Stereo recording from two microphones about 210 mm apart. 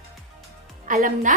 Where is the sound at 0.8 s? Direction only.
40° right (ahead or behind).